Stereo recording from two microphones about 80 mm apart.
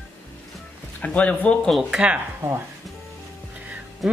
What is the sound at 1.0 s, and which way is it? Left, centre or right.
Speech, centre.